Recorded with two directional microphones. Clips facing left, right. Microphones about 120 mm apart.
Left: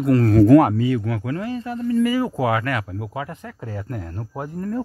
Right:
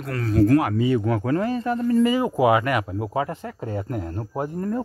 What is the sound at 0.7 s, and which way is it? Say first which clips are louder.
Speech: right 1 dB; 25° right (ahead or behind).